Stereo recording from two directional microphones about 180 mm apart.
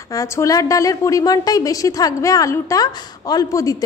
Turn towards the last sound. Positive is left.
turn(degrees=20)  # may be behind; listen again after turning